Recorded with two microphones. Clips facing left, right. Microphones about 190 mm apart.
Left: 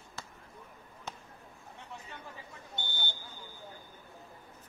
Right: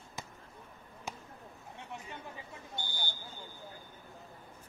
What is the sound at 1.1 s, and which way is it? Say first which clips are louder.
Basketball bounce: right 1 dB; 10° right (ahead or behind).